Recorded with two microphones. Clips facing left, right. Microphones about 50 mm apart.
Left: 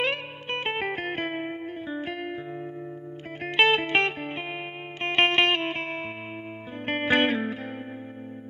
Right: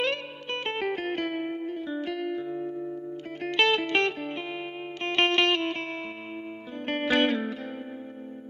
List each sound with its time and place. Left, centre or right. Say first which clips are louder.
0.0 s music: left 1 dB; left